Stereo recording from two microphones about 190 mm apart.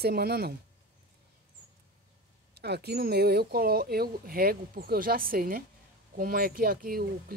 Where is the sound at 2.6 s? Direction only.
60° right (ahead or behind).